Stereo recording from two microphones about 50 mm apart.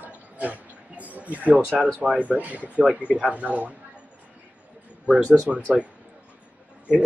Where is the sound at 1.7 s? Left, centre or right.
Right.